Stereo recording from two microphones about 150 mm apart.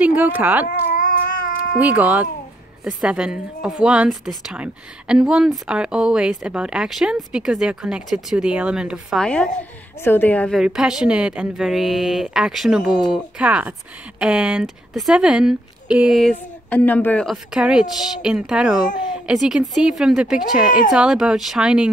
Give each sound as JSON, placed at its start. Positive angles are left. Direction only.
{"t": 0.0, "sound": "speech", "side_deg": -10}
{"t": 0.7, "sound": "cat", "side_deg": 70}
{"t": 1.8, "sound": "a woman's voice", "side_deg": -10}
{"t": 9.2, "sound": "a woman's voice", "side_deg": 5}
{"t": 10.6, "sound": "a woman's voice", "side_deg": -5}